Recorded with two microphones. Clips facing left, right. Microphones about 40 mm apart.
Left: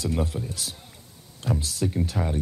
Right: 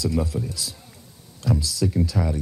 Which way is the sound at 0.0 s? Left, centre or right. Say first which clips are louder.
Right 3 dB; left.